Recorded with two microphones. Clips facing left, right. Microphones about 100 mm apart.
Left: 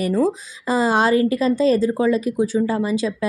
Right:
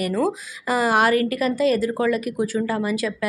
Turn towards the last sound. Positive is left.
turn(degrees=25)  # may be behind; listen again after turning